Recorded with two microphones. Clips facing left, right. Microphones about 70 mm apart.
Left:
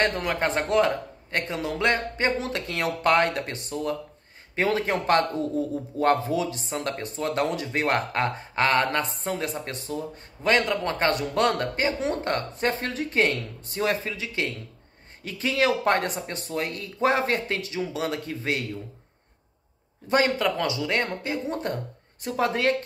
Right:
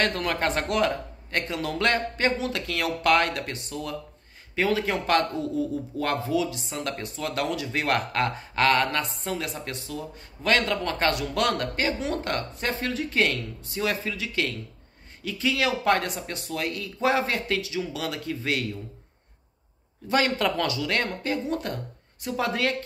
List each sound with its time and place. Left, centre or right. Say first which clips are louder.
0.0 s a man's voice: left 1 dB; left
20.1 s a man's voice: left 2 dB; left
20.3 s a man's voice: even; centre